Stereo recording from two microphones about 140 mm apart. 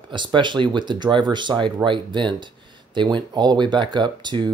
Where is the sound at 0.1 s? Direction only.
35° right (ahead or behind).